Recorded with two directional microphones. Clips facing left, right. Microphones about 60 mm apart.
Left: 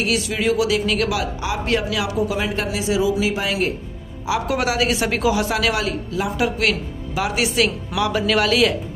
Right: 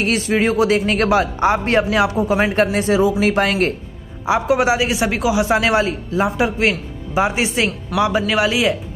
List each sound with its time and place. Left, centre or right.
0.0 s speech: right
4.3 s speech: right
5.5 s speech: right
8.3 s speech: centre